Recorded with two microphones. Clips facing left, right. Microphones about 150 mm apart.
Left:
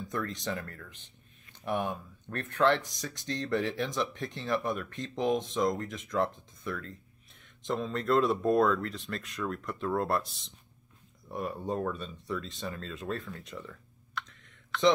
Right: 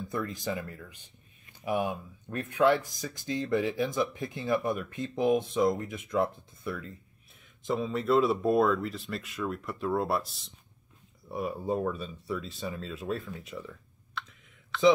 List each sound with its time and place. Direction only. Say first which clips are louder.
0.0 s speech: right 1 dB; 5° right (ahead or behind)